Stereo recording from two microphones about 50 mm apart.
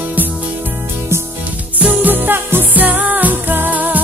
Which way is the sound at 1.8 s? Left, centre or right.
Right.